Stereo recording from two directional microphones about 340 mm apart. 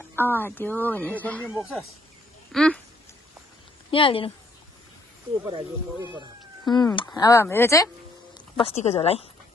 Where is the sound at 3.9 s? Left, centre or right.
Centre.